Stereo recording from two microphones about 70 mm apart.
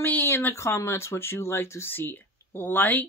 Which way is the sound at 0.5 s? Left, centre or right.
Left.